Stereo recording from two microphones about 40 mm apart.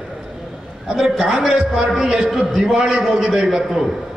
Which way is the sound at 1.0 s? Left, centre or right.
Centre.